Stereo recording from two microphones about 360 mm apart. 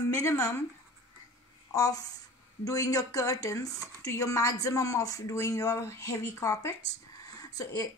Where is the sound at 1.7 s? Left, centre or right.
Centre.